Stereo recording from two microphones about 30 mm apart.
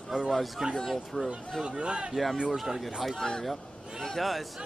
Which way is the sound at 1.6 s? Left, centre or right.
Right.